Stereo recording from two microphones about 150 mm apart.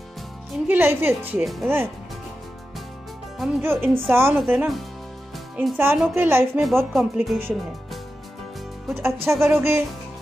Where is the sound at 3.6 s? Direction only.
15° right (ahead or behind).